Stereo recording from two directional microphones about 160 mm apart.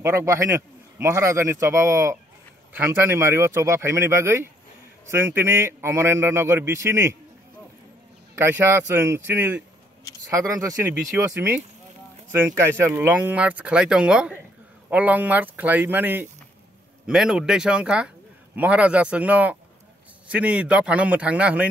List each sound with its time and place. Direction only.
0.0 s a man's voice: 15° right (ahead or behind)
8.4 s a man's voice: 15° right (ahead or behind)